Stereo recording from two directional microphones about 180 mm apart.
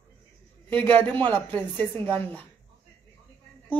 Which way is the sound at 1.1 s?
10° left (ahead or behind).